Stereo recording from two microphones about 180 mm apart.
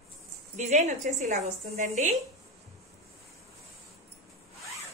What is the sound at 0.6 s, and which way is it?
A woman's voice, 40° right (ahead or behind).